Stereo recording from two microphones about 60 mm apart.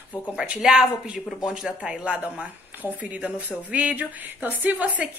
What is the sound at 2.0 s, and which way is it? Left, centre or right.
A woman's voice, right.